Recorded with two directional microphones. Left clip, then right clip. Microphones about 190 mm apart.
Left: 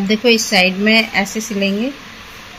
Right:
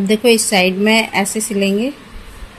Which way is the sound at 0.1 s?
20° right (ahead or behind).